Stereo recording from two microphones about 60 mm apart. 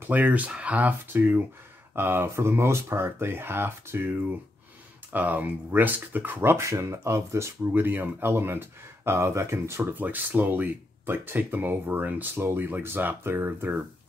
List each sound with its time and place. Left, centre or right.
0.1 s speech: right
1.0 s speech: right
6.5 s speech: right
7.7 s speech: right
9.8 s speech: right